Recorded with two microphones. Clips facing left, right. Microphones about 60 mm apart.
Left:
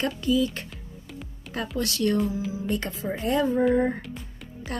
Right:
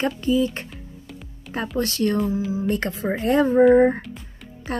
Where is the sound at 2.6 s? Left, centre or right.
Right.